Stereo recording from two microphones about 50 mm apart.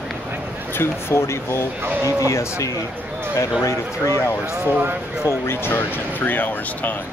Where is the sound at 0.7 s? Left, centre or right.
Left.